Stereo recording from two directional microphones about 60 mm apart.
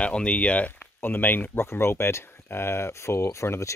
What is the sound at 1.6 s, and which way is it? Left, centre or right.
Speech, left.